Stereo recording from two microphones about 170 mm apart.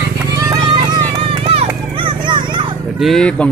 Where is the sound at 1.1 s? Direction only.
35° right (ahead or behind).